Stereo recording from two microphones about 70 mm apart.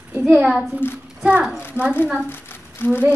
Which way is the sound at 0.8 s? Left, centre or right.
Left.